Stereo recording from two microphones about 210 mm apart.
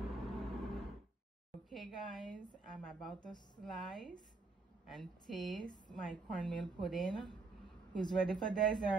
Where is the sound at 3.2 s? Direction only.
20° left (ahead or behind).